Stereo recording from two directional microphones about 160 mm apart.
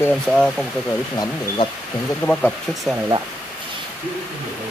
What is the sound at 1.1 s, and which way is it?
Speech, 25° left (ahead or behind).